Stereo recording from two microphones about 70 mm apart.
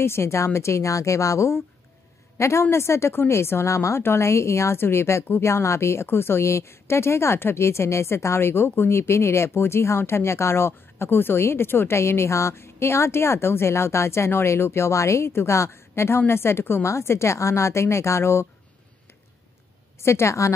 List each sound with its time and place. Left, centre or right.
0.0 s a woman's voice: left
20.0 s a woman's voice: left